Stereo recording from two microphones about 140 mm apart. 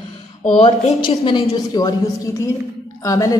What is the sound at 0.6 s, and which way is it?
A woman's voice, 40° left (ahead or behind).